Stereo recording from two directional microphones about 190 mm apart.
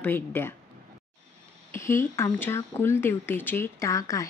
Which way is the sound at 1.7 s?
15° left (ahead or behind).